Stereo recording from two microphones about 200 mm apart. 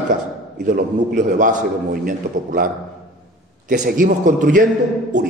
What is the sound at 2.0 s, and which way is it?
A man's voice, 45° right (ahead or behind).